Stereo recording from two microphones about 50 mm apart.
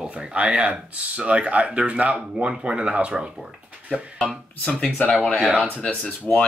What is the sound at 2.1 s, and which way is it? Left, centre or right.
Speech, centre.